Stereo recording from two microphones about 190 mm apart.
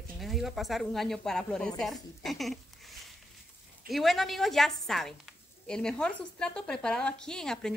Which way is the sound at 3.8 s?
Centre (ahead or behind).